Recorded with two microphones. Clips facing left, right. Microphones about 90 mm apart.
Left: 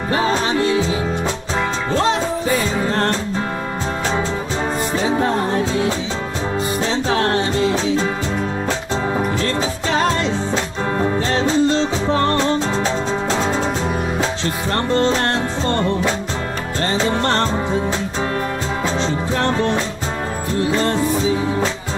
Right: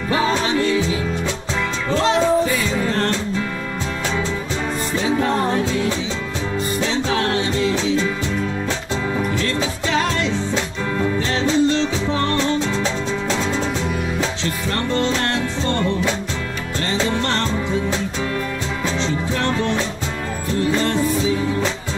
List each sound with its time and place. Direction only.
0.1 s music: 35° left (ahead or behind)
2.5 s music: 40° left (ahead or behind)
4.9 s music: 35° left (ahead or behind)
9.9 s music: 35° left (ahead or behind)
18.9 s music: 40° left (ahead or behind)